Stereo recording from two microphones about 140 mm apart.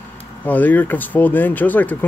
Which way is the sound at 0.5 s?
10° left (ahead or behind).